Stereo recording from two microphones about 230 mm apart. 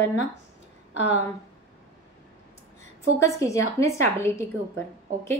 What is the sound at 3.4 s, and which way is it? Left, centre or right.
A woman's voice, centre.